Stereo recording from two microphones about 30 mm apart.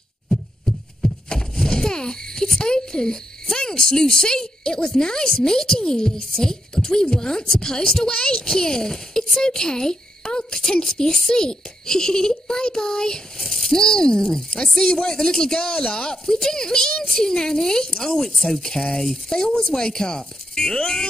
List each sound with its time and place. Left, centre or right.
1.0 s a sound: left
3.5 s speech: left
8.1 s a woman's voice: left
8.5 s a child's voice: left
13.4 s speech: centre
19.3 s speech: left